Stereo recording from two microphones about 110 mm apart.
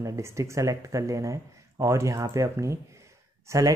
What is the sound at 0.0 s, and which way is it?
Speech, 25° right (ahead or behind).